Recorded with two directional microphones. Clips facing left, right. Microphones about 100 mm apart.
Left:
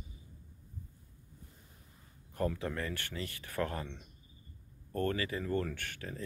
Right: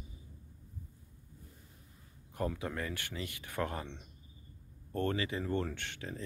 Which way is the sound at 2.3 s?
15° right (ahead or behind).